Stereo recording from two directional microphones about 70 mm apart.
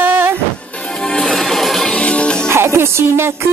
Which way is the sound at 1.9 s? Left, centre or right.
Centre.